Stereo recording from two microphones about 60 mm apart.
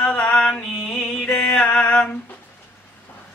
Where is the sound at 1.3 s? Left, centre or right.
Centre.